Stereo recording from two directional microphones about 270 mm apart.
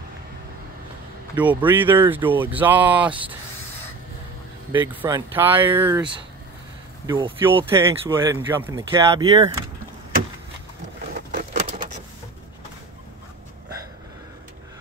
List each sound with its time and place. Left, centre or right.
1.3 s speech: centre
4.7 s speech: centre
7.1 s speech: centre